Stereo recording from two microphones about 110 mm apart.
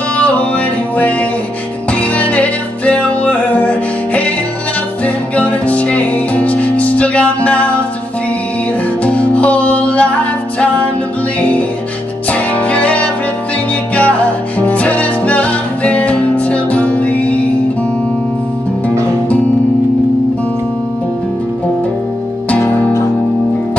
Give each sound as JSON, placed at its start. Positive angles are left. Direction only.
{"t": 0.2, "sound": "music", "side_deg": 15}
{"t": 9.0, "sound": "music", "side_deg": 10}
{"t": 12.3, "sound": "music", "side_deg": 15}
{"t": 22.5, "sound": "music", "side_deg": 25}